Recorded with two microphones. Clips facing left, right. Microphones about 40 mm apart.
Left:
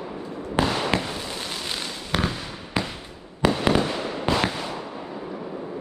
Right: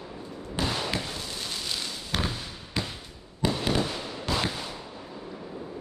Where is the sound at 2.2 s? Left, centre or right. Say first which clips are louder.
Left 5 dB; left.